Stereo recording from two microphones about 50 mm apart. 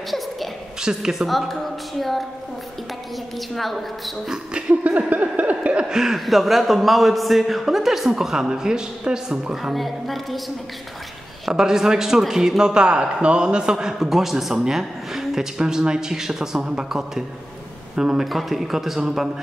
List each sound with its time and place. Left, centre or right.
0.8 s a man's voice: centre
3.3 s a man's voice: centre
4.3 s a sound: right
5.9 s a man's voice: centre
9.8 s a man's voice: centre
11.4 s a woman's voice: centre
13.9 s a woman's voice: centre